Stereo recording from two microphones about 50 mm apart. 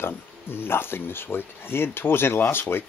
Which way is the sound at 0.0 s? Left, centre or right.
Left.